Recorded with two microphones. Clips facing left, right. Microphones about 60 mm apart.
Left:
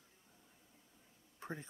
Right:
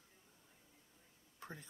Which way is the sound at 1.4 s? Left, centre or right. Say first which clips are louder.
Left 6 dB; left.